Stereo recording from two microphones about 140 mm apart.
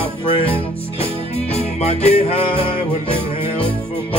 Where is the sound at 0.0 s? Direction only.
40° left (ahead or behind).